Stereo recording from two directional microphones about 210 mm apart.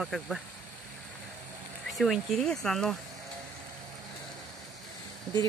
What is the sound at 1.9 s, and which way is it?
Speech, centre (ahead or behind).